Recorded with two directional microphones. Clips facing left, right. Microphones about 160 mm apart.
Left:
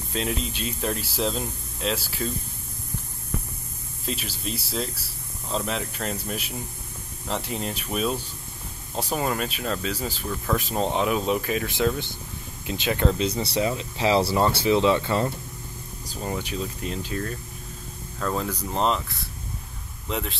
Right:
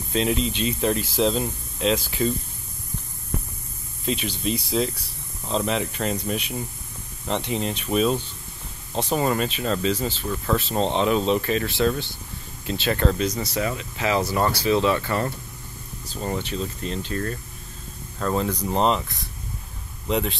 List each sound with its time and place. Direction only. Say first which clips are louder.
0.1 s speech: right 6 dB; 5° left (ahead or behind)
4.0 s speech: right 6 dB; centre (ahead or behind)
13.2 s speech: left 1 dB; 30° left (ahead or behind)
16.1 s speech: right 2 dB; 5° left (ahead or behind)
20.1 s speech: right 6 dB; centre (ahead or behind)